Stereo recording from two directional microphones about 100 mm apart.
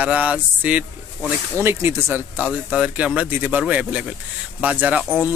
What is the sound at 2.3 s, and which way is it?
Speech, 10° right (ahead or behind).